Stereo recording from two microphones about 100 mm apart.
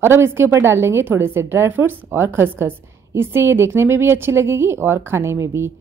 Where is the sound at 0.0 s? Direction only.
25° right (ahead or behind).